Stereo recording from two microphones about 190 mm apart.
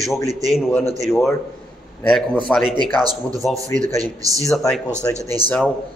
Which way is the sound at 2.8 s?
20° right (ahead or behind).